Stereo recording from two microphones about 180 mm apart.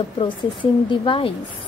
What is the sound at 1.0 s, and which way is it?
Speech, 30° left (ahead or behind).